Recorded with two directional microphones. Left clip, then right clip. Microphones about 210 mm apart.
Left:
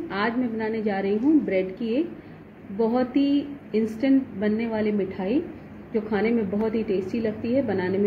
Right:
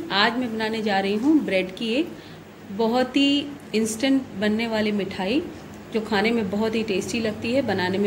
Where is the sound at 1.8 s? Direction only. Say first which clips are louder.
Right 1 dB; 20° right (ahead or behind).